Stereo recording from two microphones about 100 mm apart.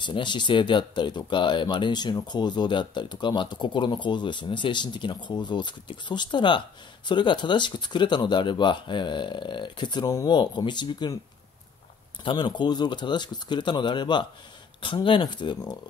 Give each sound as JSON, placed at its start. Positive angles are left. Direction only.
{"t": 0.0, "sound": "speech", "side_deg": 50}
{"t": 12.3, "sound": "speech", "side_deg": 50}